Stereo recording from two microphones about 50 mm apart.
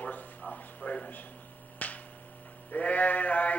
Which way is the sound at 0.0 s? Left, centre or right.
Left.